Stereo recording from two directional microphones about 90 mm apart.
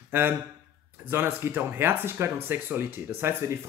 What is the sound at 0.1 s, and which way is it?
Speech, 25° right (ahead or behind).